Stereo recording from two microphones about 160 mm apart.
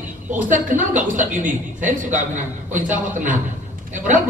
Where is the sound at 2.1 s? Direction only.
50° right (ahead or behind).